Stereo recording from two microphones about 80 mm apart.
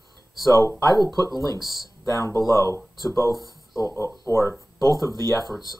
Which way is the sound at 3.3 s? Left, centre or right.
Right.